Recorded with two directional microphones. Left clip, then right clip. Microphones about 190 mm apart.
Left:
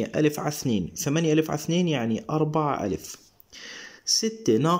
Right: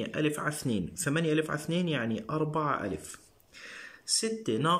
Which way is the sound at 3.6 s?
25° left (ahead or behind).